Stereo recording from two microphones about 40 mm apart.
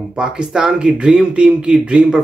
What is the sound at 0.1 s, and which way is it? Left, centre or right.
Speech, right.